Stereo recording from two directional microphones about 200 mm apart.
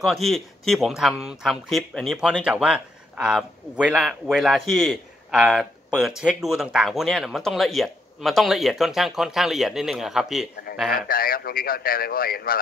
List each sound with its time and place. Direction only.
0.0 s speech: centre (ahead or behind)
10.9 s a man's voice: 45° left (ahead or behind)